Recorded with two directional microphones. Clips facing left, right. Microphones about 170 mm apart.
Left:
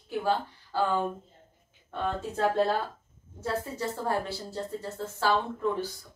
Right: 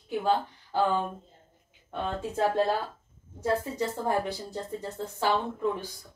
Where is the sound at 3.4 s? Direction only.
15° right (ahead or behind).